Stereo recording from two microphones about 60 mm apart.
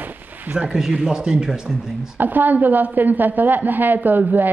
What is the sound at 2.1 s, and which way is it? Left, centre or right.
A woman's voice, right.